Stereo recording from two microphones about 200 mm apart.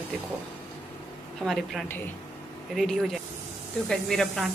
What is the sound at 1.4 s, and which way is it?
Speech, centre (ahead or behind).